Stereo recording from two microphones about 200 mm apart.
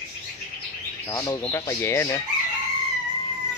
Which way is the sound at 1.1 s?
15° left (ahead or behind).